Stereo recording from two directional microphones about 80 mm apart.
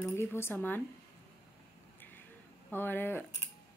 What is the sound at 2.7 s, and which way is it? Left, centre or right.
Speech, left.